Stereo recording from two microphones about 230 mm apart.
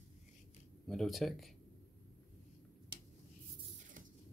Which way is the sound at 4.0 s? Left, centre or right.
Right.